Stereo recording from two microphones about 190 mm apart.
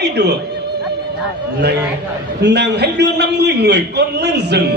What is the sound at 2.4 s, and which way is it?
A man's voice, 65° right (ahead or behind).